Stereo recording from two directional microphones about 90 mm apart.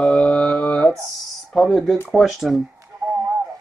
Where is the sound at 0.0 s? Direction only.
15° left (ahead or behind).